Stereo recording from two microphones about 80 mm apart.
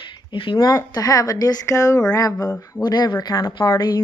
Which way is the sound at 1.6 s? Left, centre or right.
Left.